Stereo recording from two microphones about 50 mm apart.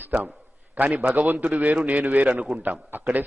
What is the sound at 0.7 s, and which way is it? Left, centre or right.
A man's voice, right.